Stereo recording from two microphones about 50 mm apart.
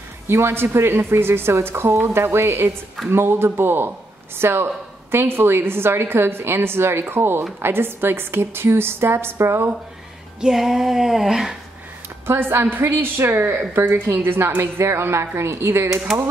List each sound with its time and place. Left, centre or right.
0.3 s a woman's voice: right
3.1 s a woman's voice: right
10.4 s female singing: centre
12.3 s a woman's voice: right